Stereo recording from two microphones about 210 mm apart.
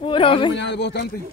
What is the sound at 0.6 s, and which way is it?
Speech, 55° left (ahead or behind).